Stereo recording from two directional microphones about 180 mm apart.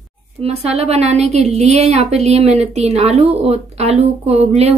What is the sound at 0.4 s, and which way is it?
A woman's voice, 35° right (ahead or behind).